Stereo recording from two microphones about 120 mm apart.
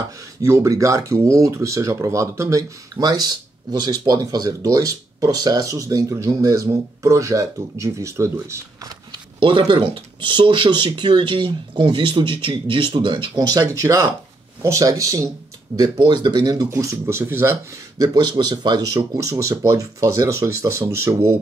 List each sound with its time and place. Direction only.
0.4 s speech: 25° right (ahead or behind)
9.1 s speech: 40° right (ahead or behind)
16.0 s speech: 40° right (ahead or behind)
16.7 s speech: 20° right (ahead or behind)
17.9 s speech: 35° right (ahead or behind)